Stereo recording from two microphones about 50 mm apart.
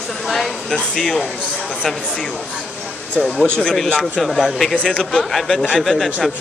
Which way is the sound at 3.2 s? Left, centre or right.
Centre.